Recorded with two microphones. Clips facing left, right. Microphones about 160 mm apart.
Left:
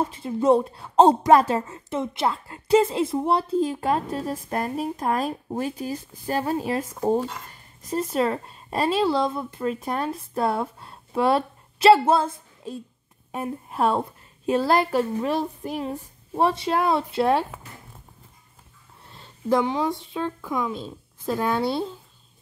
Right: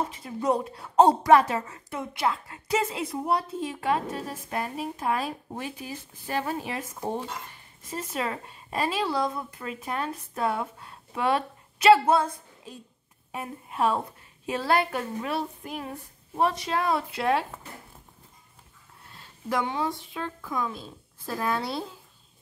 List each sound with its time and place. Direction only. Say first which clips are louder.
0.1 s speech: left 7 dB; 25° left (ahead or behind)
13.3 s speech: left 6 dB; 40° left (ahead or behind)
19.1 s a woman's voice: left 7 dB; 20° left (ahead or behind)